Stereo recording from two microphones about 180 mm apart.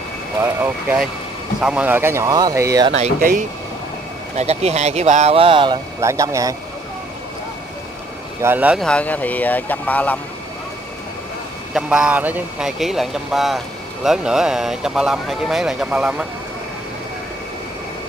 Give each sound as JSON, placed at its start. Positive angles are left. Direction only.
{"t": 0.4, "sound": "speech", "side_deg": -10}
{"t": 2.9, "sound": "speech", "side_deg": -45}
{"t": 4.4, "sound": "speech", "side_deg": -35}
{"t": 5.9, "sound": "speech", "side_deg": -15}
{"t": 8.4, "sound": "speech", "side_deg": -10}
{"t": 8.8, "sound": "speech", "side_deg": 5}
{"t": 11.7, "sound": "speech", "side_deg": -5}